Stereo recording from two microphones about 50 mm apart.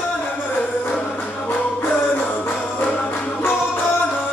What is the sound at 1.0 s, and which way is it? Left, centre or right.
Music, left.